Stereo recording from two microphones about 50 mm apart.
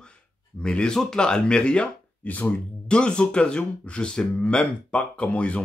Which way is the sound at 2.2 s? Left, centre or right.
Left.